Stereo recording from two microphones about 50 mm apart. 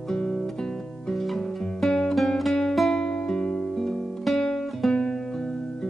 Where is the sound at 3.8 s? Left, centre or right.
Centre.